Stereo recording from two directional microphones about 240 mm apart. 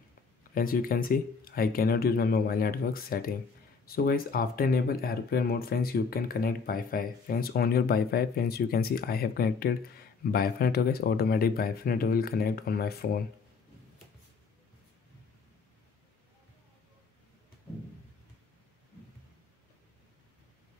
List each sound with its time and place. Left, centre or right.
0.6 s speech: left